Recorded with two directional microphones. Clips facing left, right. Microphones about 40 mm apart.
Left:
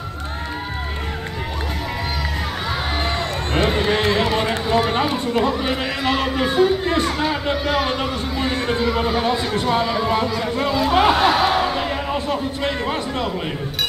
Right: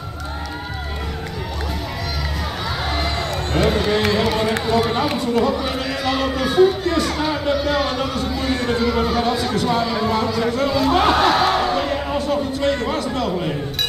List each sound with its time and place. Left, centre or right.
3.5 s run: left
5.1 s a man's voice: left